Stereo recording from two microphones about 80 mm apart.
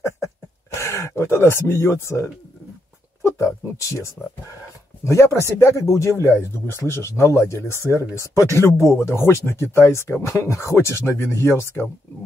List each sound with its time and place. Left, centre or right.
0.7 s speech: left